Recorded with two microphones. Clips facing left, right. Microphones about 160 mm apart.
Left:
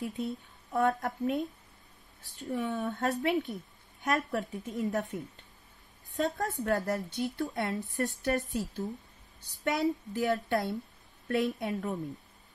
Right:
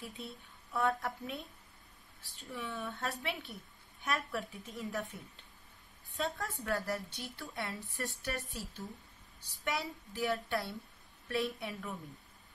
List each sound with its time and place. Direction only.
0.0 s a woman's voice: 40° left (ahead or behind)
6.1 s a woman's voice: 40° left (ahead or behind)
9.7 s a woman's voice: 45° left (ahead or behind)